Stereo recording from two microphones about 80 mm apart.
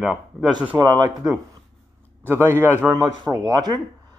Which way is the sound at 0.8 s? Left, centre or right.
Right.